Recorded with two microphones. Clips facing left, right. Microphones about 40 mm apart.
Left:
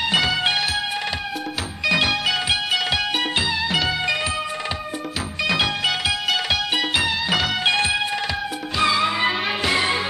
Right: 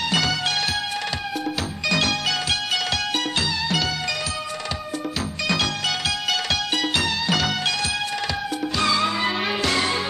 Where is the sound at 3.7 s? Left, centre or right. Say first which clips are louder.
Left 3 dB; centre.